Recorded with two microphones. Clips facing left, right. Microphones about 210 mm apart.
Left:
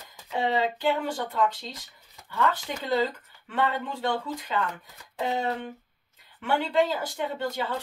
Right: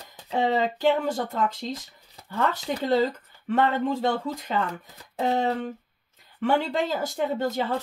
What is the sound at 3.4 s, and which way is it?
A woman's voice, 45° right (ahead or behind).